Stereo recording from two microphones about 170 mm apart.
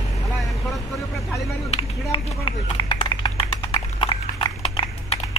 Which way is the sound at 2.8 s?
25° left (ahead or behind).